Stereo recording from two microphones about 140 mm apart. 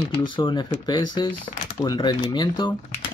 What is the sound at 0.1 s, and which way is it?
Speech, 35° left (ahead or behind).